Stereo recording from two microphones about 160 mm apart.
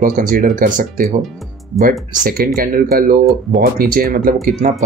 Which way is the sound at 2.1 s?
65° right (ahead or behind).